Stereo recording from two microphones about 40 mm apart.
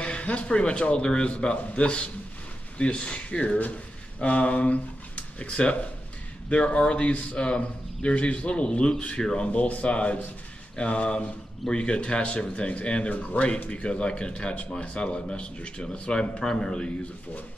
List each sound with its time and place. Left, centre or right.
0.0 s speech: left